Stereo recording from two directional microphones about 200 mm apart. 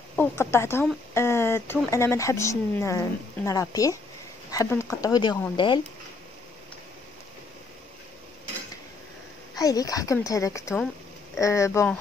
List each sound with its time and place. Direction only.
0.1 s speech: 10° left (ahead or behind)
9.6 s speech: 20° left (ahead or behind)